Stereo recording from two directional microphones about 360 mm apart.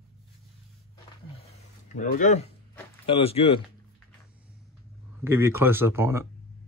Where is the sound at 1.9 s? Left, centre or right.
Left.